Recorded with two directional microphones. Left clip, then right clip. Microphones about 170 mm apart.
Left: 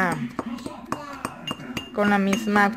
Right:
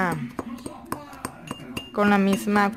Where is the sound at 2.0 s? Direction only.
25° right (ahead or behind).